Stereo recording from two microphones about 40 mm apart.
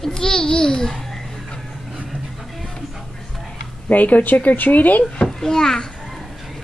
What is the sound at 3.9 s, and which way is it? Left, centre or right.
Speech, left.